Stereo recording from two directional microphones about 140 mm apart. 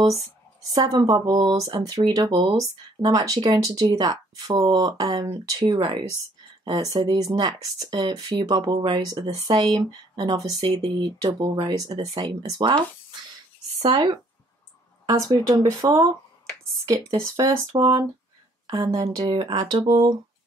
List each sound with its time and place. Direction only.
0.7 s speech: 25° right (ahead or behind)
13.8 s speech: 30° right (ahead or behind)
19.3 s speech: 40° right (ahead or behind)